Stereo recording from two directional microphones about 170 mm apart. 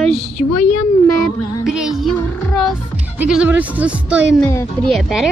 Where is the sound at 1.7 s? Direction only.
5° right (ahead or behind).